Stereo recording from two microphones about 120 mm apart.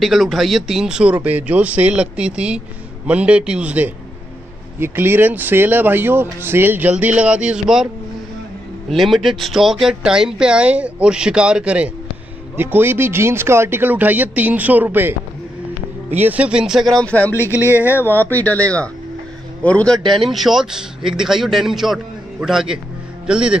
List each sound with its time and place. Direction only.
0.0 s speech: centre (ahead or behind)